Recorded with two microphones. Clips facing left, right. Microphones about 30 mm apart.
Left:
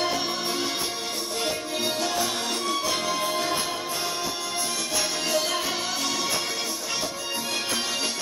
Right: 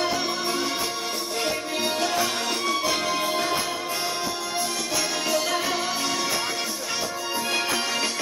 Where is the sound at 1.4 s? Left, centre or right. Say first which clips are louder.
Right 2 dB; centre.